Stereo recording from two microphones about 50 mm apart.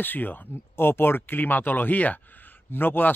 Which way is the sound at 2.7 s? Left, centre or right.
Left.